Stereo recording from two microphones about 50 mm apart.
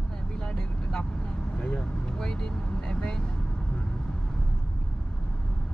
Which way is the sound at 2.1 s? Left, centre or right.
Centre.